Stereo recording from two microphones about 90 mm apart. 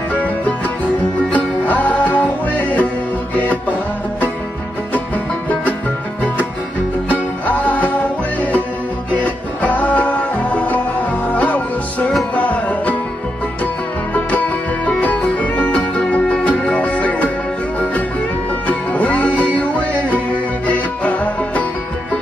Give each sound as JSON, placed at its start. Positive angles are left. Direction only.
{"t": 0.1, "sound": "music", "side_deg": 20}
{"t": 7.1, "sound": "music", "side_deg": 15}
{"t": 14.9, "sound": "music", "side_deg": 15}
{"t": 18.7, "sound": "music", "side_deg": 15}